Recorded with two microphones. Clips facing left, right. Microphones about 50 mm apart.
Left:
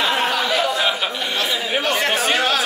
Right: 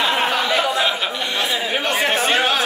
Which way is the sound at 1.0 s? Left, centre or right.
Centre.